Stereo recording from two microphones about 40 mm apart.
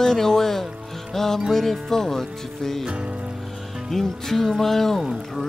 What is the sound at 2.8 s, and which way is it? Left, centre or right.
Music, right.